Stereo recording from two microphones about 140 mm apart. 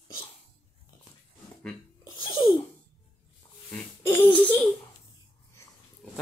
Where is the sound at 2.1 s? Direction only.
35° left (ahead or behind).